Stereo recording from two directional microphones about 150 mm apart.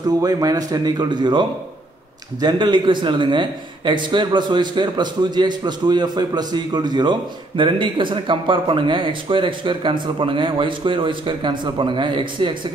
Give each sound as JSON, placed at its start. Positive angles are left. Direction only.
{"t": 0.2, "sound": "a man's voice", "side_deg": -25}
{"t": 2.4, "sound": "a man's voice", "side_deg": -30}